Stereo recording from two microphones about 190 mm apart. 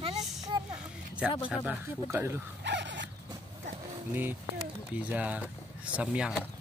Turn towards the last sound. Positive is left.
turn(degrees=-5)  # may be behind; listen again after turning